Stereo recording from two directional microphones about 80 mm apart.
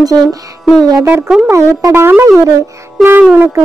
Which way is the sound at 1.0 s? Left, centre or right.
Right.